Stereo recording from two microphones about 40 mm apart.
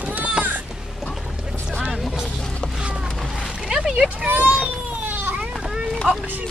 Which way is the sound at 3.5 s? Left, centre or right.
Centre.